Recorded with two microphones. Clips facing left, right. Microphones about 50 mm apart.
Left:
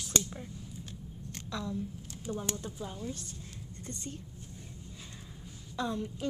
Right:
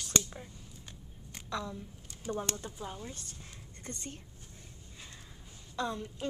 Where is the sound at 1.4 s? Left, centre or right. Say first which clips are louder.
Right 1 dB; centre.